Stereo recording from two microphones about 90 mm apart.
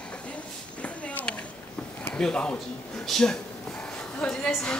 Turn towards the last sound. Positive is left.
turn(degrees=10)  # may be behind; listen again after turning